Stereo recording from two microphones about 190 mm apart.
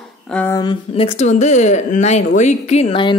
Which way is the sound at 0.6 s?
25° left (ahead or behind).